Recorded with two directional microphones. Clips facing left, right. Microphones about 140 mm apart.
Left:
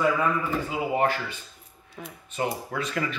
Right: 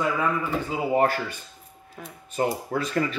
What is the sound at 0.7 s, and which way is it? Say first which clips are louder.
Speech: right 4 dB; 40° right (ahead or behind).